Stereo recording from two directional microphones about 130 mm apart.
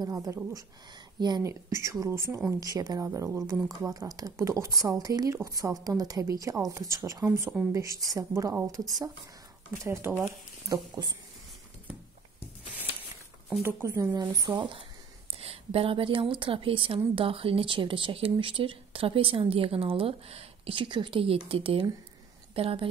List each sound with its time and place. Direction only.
0.0 s speech: 25° right (ahead or behind)
9.8 s speech: 15° right (ahead or behind)
10.7 s speech: 30° right (ahead or behind)
13.6 s a woman's voice: 15° right (ahead or behind); by 22.8 s 45° right (ahead or behind)